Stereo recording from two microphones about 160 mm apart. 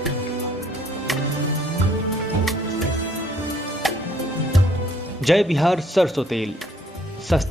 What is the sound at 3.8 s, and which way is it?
Music, centre (ahead or behind).